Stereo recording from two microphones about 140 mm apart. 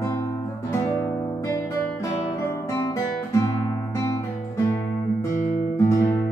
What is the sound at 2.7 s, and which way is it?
Guitar, 25° left (ahead or behind).